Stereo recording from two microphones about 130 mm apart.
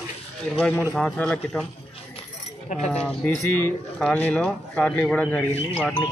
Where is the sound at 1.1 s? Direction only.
10° left (ahead or behind).